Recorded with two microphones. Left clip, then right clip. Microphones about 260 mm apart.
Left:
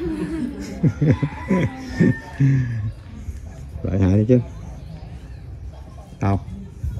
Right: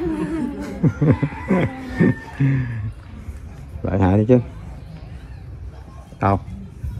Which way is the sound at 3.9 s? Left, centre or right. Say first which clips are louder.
Right 3 dB; centre.